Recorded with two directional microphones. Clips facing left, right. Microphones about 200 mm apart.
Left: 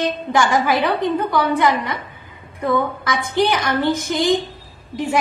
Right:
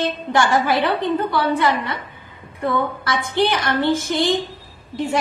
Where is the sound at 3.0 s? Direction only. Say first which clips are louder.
Right 1 dB; 15° left (ahead or behind).